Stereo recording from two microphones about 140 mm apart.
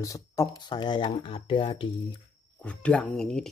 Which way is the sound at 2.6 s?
10° left (ahead or behind).